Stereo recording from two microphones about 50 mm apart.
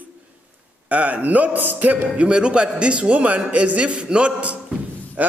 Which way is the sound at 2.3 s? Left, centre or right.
Right.